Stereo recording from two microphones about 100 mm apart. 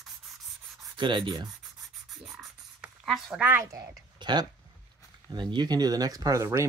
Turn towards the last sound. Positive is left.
turn(degrees=-30)  # may be behind; listen again after turning